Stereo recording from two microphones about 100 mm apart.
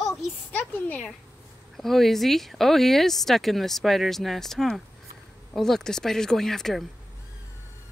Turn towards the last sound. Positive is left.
turn(degrees=5)  # may be behind; listen again after turning